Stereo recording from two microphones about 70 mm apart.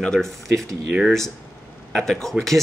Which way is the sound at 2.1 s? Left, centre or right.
Centre.